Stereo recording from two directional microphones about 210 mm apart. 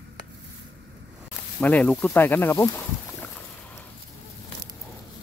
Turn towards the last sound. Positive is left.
turn(degrees=10)  # may be behind; listen again after turning